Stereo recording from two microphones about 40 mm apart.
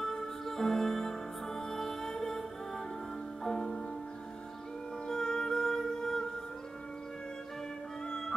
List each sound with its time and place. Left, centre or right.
0.0 s music: centre
3.4 s music: centre
5.0 s music: centre